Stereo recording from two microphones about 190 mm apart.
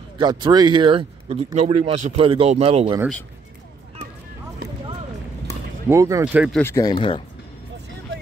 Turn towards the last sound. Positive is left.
turn(degrees=25)  # may be behind; listen again after turning